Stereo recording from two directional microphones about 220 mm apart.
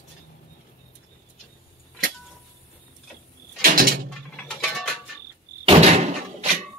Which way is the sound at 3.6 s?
40° right (ahead or behind).